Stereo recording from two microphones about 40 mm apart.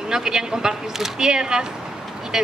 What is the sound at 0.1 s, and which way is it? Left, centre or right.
Speech, centre.